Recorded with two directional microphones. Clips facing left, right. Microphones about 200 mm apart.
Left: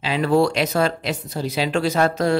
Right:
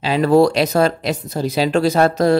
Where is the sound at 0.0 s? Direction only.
40° right (ahead or behind).